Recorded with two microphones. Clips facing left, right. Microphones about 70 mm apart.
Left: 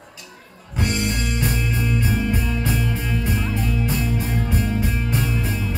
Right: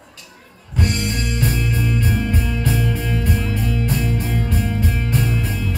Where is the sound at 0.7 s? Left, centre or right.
Centre.